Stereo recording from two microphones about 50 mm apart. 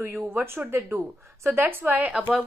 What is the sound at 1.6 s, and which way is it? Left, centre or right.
Speech, right.